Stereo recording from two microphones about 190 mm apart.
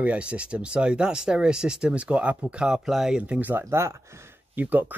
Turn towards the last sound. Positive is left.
turn(degrees=-10)  # may be behind; listen again after turning